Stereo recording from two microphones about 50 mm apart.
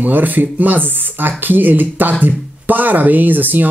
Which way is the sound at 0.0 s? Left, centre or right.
Right.